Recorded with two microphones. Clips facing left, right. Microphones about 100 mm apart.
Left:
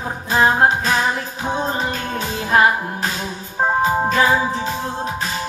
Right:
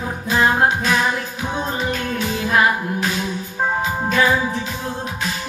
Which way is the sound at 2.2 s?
30° left (ahead or behind).